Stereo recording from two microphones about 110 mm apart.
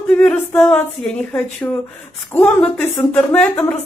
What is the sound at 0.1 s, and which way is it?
Speech, 15° left (ahead or behind).